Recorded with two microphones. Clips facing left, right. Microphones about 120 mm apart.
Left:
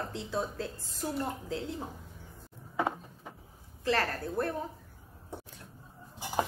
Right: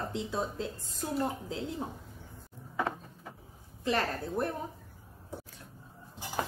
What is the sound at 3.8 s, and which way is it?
Speech, 20° right (ahead or behind).